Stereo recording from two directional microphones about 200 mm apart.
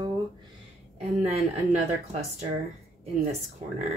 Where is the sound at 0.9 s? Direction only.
30° right (ahead or behind).